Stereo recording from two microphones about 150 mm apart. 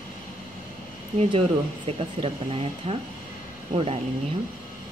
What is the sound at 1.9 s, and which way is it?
Speech, 40° right (ahead or behind).